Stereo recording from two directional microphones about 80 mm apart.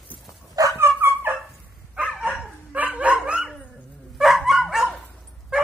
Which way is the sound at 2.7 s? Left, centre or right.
Centre.